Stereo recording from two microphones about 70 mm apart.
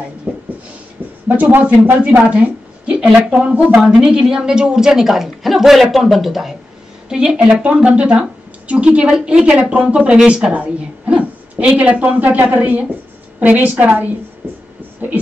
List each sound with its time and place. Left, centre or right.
0.3 s a sound: centre
1.3 s a woman's voice: right
14.4 s heart murmur: right